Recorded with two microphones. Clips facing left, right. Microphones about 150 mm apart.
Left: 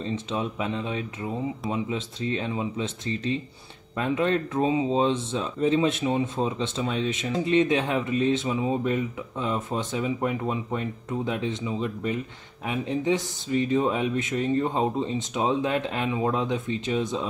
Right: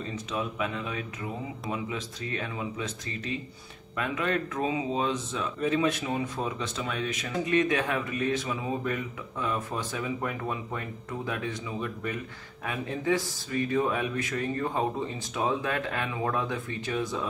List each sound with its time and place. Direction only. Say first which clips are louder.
0.0 s speech: left 4 dB; 30° left (ahead or behind)